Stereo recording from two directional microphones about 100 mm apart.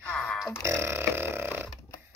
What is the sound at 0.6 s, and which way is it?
Burping, 25° right (ahead or behind).